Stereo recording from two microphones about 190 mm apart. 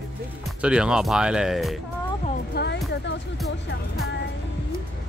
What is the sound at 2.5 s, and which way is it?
Music, 60° left (ahead or behind).